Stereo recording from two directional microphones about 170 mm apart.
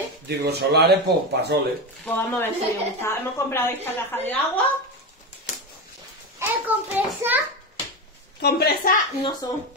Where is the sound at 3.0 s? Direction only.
15° left (ahead or behind).